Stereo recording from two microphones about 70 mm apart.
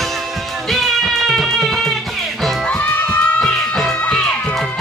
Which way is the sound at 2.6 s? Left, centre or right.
Left.